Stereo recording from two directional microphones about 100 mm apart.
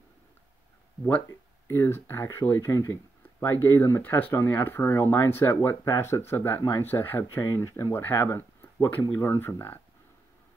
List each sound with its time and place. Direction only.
1.7 s speech: 25° left (ahead or behind)